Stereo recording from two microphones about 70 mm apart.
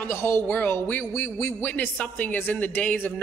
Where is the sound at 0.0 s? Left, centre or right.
Left.